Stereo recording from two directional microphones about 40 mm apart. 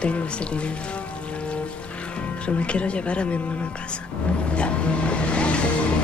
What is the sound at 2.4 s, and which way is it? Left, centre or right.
Speech, left.